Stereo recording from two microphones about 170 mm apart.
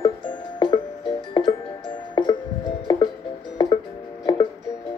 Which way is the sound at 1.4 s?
30° left (ahead or behind).